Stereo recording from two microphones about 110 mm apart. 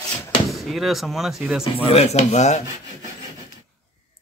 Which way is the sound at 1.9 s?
70° left (ahead or behind).